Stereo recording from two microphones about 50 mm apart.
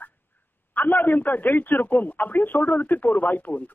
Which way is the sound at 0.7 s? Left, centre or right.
Left.